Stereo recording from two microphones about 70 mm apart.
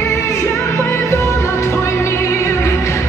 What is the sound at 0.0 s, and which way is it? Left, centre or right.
Music, left.